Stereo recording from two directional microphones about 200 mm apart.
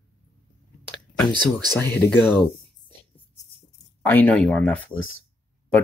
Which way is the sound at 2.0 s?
10° left (ahead or behind).